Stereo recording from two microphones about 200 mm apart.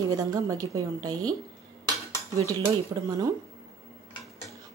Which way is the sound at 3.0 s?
15° right (ahead or behind).